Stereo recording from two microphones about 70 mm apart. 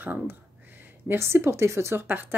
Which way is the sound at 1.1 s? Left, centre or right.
Right.